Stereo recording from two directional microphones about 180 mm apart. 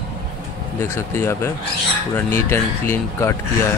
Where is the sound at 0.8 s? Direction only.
15° left (ahead or behind).